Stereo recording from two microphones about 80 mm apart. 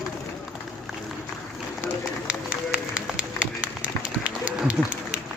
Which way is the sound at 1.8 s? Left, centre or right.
Centre.